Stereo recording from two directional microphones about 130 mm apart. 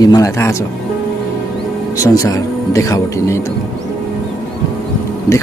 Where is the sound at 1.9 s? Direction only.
25° left (ahead or behind).